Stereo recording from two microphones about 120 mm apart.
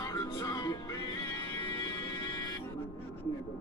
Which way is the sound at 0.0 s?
30° left (ahead or behind).